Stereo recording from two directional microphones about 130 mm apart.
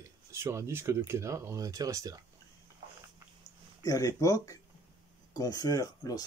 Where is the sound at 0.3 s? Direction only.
20° right (ahead or behind).